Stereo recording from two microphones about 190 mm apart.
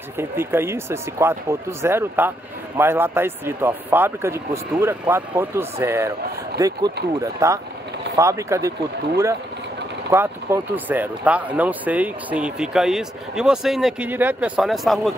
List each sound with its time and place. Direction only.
0.2 s speech: 10° right (ahead or behind)
7.0 s speech: 60° right (ahead or behind)
7.3 s speech: 15° right (ahead or behind)
10.1 s speech: 10° right (ahead or behind)